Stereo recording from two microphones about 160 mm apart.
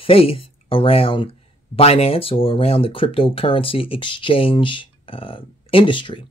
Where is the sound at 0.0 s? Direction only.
35° left (ahead or behind).